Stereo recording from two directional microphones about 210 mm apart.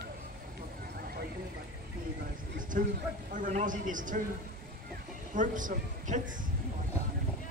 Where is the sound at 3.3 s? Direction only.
35° right (ahead or behind).